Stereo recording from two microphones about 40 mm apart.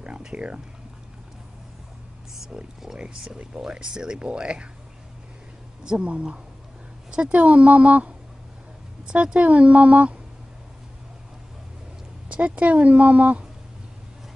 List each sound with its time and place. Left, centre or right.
0.2 s speech: right
2.5 s speech: right
3.7 s speech: centre
5.9 s speech: right
7.3 s a woman's voice: right
9.0 s speech: right
9.4 s a woman's voice: right
12.3 s a woman's voice: right